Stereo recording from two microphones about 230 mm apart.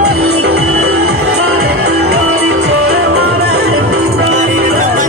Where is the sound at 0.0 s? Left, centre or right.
Right.